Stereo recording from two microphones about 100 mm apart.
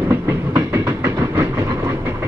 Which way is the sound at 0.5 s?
30° right (ahead or behind).